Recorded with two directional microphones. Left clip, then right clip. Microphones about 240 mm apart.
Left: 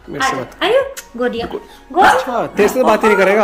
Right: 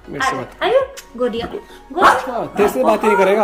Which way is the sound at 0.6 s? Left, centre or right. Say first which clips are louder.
Left 2 dB; left.